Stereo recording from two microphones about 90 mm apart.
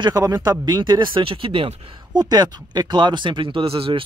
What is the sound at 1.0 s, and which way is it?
Speech, 75° right (ahead or behind).